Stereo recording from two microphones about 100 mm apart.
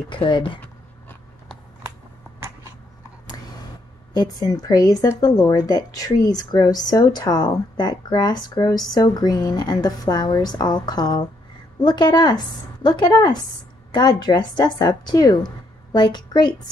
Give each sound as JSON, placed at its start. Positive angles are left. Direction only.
{"t": 0.1, "sound": "speech", "side_deg": 55}
{"t": 4.1, "sound": "a woman's voice", "side_deg": 40}